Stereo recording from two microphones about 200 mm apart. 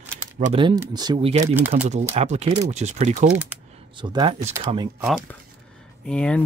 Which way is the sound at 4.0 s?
20° right (ahead or behind).